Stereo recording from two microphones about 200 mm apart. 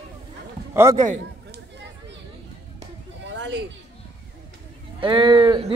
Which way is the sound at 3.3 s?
65° right (ahead or behind).